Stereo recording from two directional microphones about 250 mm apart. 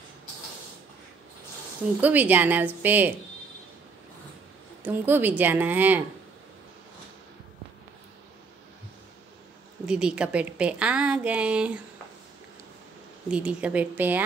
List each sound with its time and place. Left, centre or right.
2.0 s a woman's voice: centre
4.8 s a woman's voice: centre
9.8 s a woman's voice: centre
13.3 s a woman's voice: centre